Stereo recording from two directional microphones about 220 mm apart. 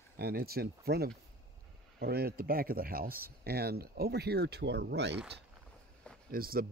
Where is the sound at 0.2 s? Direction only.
45° right (ahead or behind).